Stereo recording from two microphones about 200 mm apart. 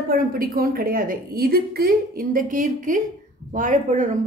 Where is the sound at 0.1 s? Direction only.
45° right (ahead or behind).